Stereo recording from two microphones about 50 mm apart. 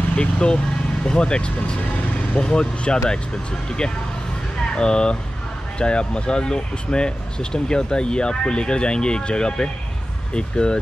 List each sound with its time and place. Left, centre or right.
0.1 s speech: left
4.7 s speech: centre